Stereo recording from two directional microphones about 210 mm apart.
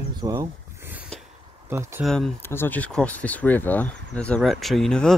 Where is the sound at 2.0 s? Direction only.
Centre (ahead or behind).